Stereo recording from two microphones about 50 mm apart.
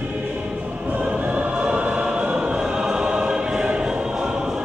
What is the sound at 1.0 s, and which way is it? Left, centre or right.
Choir, right.